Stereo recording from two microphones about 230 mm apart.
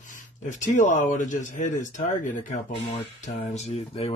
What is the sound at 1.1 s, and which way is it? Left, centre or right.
Speech, left.